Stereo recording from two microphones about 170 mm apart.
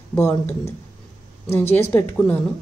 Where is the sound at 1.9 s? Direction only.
10° left (ahead or behind).